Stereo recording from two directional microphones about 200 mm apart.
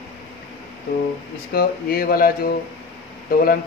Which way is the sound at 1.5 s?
50° left (ahead or behind).